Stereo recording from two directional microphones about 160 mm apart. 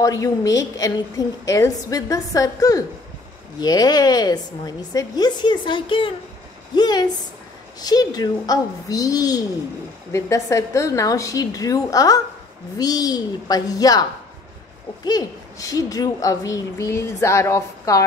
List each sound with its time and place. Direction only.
0.0 s a woman's voice: 20° left (ahead or behind)
15.0 s a woman's voice: 25° left (ahead or behind)